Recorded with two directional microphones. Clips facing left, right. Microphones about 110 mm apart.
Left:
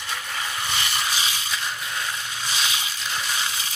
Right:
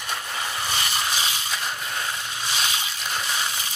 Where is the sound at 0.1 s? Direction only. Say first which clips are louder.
Right 1 dB; 20° right (ahead or behind).